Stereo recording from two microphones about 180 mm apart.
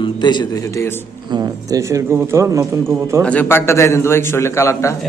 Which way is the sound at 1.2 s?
25° right (ahead or behind).